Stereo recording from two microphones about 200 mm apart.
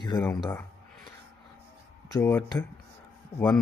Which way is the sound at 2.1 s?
15° left (ahead or behind).